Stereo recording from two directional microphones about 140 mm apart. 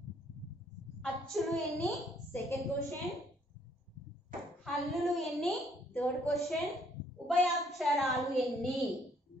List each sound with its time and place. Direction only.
1.2 s a woman's voice: centre (ahead or behind)
2.3 s a woman's voice: 20° left (ahead or behind)
4.6 s a woman's voice: centre (ahead or behind)